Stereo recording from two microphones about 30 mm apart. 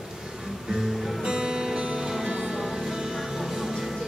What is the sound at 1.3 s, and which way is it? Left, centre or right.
Music, right.